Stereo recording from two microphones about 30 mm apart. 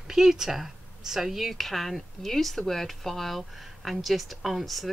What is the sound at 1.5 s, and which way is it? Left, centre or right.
Speech, centre.